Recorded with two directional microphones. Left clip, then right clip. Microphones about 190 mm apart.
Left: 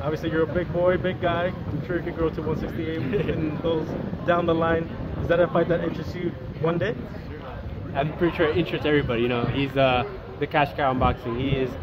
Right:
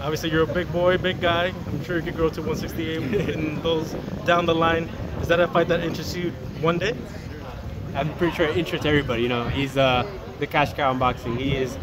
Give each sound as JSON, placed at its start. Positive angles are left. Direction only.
{"t": 0.0, "sound": "speech", "side_deg": -45}
{"t": 3.0, "sound": "speech", "side_deg": -5}
{"t": 3.7, "sound": "speech", "side_deg": -45}
{"t": 7.9, "sound": "speech", "side_deg": -10}